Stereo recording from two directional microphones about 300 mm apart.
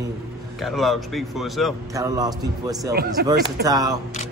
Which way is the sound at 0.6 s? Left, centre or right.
Centre.